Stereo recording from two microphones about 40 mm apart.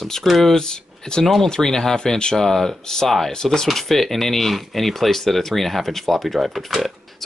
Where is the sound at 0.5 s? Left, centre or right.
Centre.